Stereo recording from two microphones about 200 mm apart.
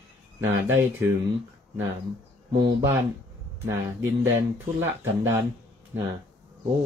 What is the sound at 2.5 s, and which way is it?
Speech, 15° right (ahead or behind).